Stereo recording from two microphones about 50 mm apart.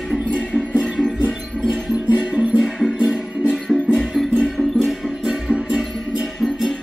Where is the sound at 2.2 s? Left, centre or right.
Right.